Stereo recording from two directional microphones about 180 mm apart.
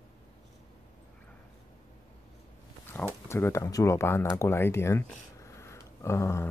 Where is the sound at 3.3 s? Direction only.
15° left (ahead or behind).